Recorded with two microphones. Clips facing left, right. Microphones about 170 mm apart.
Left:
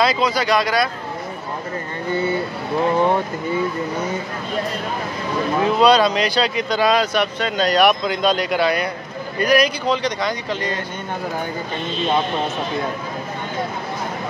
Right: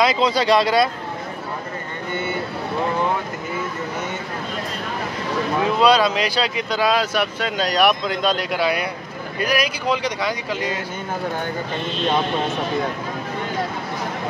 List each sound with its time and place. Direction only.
0.0 s speech: 25° right (ahead or behind)
5.6 s speech: centre (ahead or behind)